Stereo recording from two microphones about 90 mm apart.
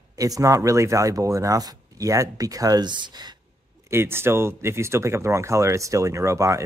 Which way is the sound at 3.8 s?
25° right (ahead or behind).